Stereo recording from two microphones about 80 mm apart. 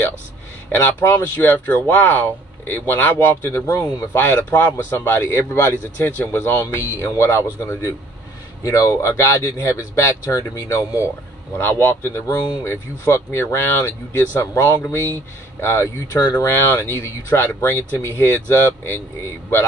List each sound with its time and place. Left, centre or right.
0.7 s speech: left
8.6 s speech: left
11.5 s speech: left